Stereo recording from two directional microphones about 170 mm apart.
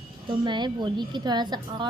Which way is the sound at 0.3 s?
25° right (ahead or behind).